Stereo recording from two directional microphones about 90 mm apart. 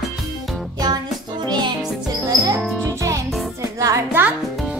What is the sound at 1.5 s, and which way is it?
Music, 55° right (ahead or behind).